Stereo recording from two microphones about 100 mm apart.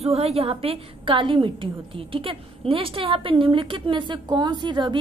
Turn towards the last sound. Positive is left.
turn(degrees=-50)  # may be behind; listen again after turning